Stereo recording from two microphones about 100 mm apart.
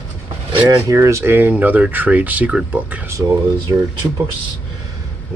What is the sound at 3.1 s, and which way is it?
Speech, 30° right (ahead or behind).